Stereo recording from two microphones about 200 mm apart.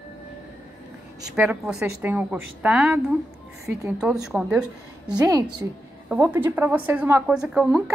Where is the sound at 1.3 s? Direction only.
5° right (ahead or behind).